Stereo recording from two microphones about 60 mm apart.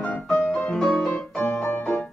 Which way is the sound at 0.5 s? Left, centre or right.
Centre.